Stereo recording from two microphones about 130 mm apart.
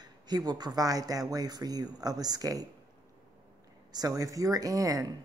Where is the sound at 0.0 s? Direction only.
30° right (ahead or behind).